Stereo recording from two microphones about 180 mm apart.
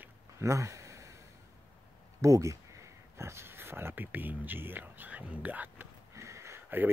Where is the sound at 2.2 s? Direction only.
15° right (ahead or behind).